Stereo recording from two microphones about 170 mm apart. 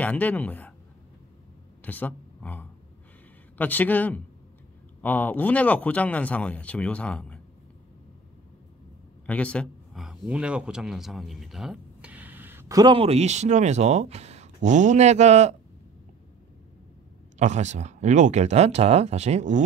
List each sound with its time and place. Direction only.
0.0 s speech: 10° left (ahead or behind)
1.8 s speech: 10° left (ahead or behind)
9.2 s speech: 10° left (ahead or behind); by 15.5 s 40° right (ahead or behind)
17.4 s speech: 45° right (ahead or behind)